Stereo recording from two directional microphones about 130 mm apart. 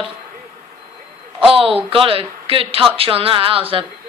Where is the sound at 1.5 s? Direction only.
45° right (ahead or behind).